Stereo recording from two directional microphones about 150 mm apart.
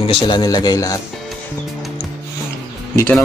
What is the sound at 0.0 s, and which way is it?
Speech, 30° left (ahead or behind).